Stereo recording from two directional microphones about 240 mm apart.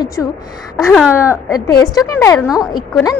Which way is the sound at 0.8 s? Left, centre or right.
Centre.